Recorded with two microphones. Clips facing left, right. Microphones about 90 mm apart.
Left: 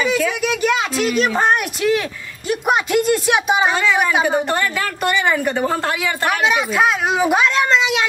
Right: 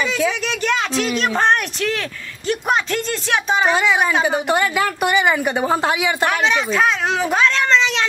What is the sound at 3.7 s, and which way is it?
A woman's voice, 15° right (ahead or behind).